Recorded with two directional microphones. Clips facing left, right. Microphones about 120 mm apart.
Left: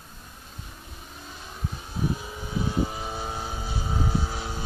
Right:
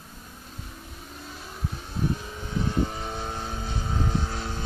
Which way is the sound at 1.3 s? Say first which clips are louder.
Even; centre (ahead or behind).